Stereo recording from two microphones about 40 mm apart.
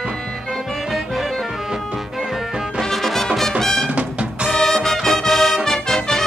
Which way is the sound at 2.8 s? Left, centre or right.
Centre.